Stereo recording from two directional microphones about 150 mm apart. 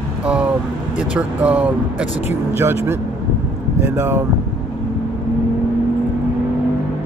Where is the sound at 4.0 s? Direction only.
15° right (ahead or behind).